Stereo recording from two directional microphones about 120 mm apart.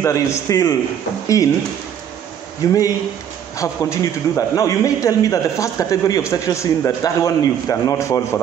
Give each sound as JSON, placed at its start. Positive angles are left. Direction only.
{"t": 0.0, "sound": "a man's voice", "side_deg": 25}
{"t": 2.6, "sound": "a man's voice", "side_deg": 30}